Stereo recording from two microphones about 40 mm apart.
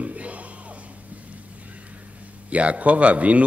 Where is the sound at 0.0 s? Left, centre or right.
Right.